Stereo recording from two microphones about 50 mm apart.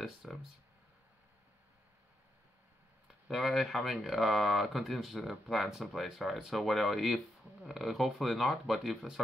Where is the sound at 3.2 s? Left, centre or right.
Centre.